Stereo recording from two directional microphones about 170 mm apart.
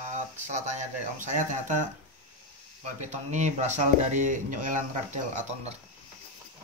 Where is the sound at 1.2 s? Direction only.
45° right (ahead or behind).